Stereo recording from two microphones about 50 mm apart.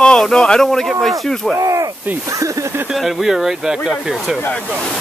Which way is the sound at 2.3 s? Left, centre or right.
Right.